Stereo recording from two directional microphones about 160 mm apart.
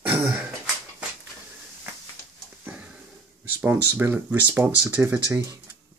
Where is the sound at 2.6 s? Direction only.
10° right (ahead or behind).